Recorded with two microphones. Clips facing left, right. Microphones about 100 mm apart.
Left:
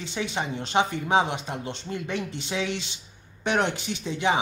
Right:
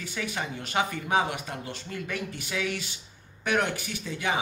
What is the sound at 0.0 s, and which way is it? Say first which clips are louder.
A woman's voice: left 3 dB; 25° left (ahead or behind).